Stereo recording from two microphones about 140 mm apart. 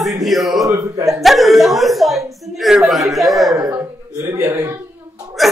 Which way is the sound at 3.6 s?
15° right (ahead or behind).